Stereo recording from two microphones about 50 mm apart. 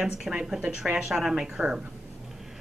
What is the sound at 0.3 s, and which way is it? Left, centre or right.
Speech, centre.